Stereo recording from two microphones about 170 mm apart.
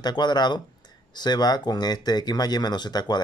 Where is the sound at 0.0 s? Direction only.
25° left (ahead or behind).